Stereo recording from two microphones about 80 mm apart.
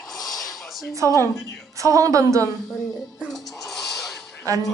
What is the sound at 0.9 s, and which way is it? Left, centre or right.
A woman's voice, right.